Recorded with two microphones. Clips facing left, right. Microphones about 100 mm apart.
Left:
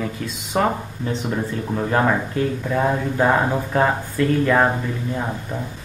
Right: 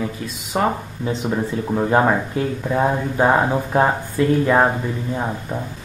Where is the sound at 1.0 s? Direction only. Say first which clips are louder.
Right 3 dB; 15° right (ahead or behind).